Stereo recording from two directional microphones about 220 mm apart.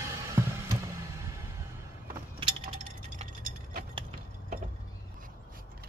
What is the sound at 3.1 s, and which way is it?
Tick-tock, 40° right (ahead or behind).